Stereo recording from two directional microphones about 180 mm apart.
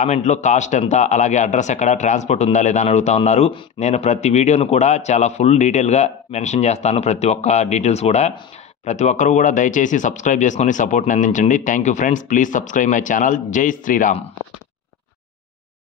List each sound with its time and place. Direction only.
0.0 s speech: 40° left (ahead or behind)